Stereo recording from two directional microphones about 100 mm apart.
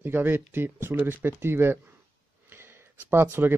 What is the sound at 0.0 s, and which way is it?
Speech, 20° right (ahead or behind).